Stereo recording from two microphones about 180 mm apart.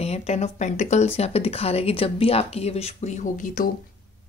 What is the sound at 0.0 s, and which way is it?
Speech, 35° left (ahead or behind).